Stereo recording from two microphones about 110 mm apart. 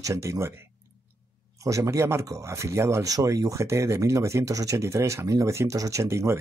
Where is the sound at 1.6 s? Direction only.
30° right (ahead or behind).